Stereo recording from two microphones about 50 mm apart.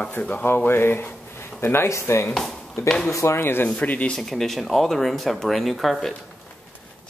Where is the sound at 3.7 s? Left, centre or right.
Left.